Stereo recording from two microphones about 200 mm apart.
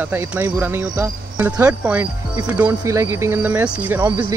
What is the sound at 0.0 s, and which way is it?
Speech, 10° right (ahead or behind).